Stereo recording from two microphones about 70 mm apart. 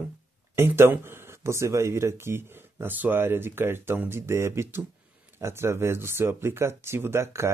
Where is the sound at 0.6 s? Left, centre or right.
Right.